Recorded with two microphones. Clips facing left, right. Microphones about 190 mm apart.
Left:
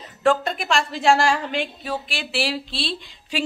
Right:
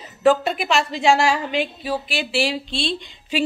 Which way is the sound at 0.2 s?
5° right (ahead or behind).